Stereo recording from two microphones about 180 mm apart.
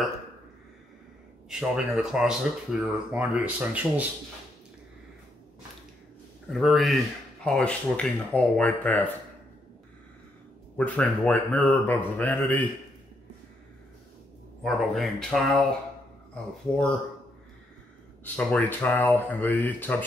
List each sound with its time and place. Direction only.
1.5 s speech: centre (ahead or behind)
6.5 s a man's voice: centre (ahead or behind)
10.8 s a man's voice: 10° left (ahead or behind)
14.6 s speech: centre (ahead or behind)
18.2 s a man's voice: 10° left (ahead or behind)